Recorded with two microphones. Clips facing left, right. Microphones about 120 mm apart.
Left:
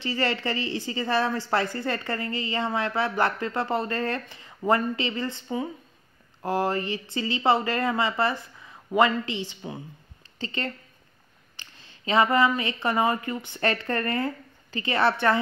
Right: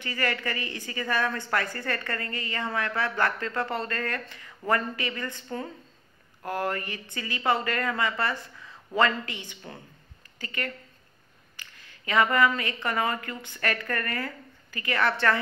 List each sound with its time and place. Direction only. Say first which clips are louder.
0.0 s a woman's voice: left 3 dB; 25° left (ahead or behind)
6.4 s a woman's voice: left 4 dB; 20° left (ahead or behind)
10.4 s a woman's voice: left 3 dB; 25° left (ahead or behind)